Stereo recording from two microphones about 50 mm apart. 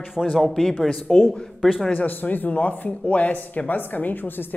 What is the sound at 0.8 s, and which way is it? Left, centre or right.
A woman's voice, left.